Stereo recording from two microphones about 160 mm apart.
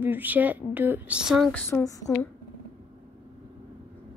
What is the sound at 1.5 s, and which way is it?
Speech, 10° left (ahead or behind).